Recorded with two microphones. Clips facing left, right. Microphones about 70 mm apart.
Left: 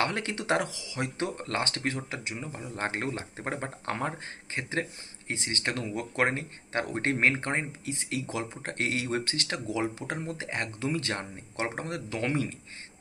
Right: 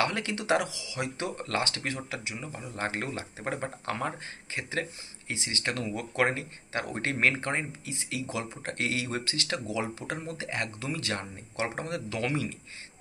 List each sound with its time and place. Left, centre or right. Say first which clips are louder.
0.0 s speech: even; left